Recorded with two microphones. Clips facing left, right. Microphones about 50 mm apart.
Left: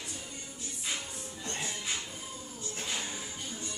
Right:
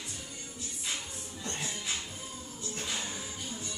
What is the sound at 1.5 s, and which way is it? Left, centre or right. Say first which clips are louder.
Music: left 1 dB; centre.